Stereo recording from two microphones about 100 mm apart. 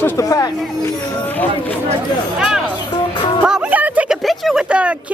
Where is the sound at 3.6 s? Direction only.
15° right (ahead or behind).